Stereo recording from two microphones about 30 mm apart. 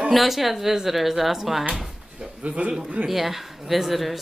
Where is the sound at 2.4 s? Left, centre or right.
Right.